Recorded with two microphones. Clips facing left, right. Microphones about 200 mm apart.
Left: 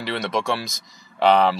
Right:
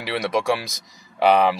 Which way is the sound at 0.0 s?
10° right (ahead or behind).